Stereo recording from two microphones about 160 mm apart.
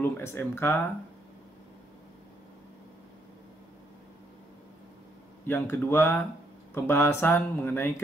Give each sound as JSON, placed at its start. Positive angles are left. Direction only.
{"t": 0.0, "sound": "speech", "side_deg": 15}
{"t": 5.5, "sound": "speech", "side_deg": 15}